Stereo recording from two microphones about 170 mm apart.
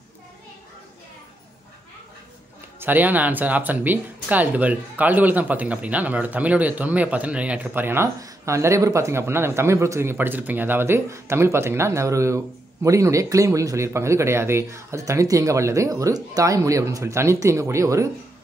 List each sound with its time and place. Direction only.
2.8 s speech: 10° right (ahead or behind)